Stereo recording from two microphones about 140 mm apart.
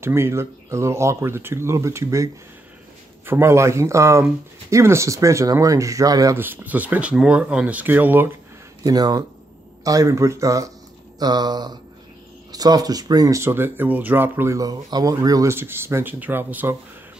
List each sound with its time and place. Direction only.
0.0 s speech: 20° right (ahead or behind)
3.3 s speech: 20° right (ahead or behind)
8.8 s speech: 30° right (ahead or behind)